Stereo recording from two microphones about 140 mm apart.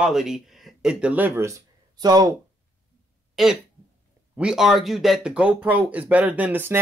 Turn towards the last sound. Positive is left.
turn(degrees=-10)  # may be behind; listen again after turning